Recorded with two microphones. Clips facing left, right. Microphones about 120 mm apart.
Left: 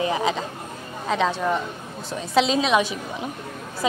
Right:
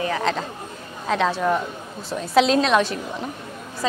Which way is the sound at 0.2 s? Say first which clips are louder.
Even; 5° left (ahead or behind).